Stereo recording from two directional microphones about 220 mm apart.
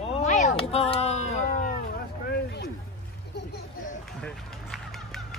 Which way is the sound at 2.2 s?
50° left (ahead or behind).